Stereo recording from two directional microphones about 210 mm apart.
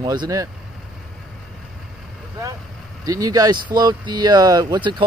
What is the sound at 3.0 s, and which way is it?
Speech, 15° right (ahead or behind).